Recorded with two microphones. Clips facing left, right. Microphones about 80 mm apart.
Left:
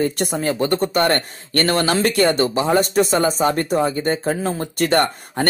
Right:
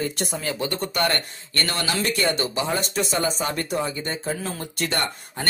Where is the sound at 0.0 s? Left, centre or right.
Left.